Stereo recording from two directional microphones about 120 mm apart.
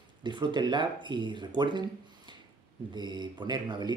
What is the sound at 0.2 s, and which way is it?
Speech, 40° right (ahead or behind).